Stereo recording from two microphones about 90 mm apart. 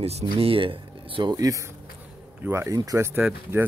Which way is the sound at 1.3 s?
40° right (ahead or behind).